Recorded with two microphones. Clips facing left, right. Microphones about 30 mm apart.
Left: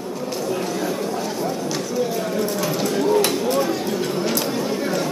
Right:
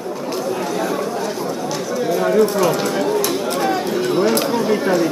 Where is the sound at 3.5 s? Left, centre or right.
Right.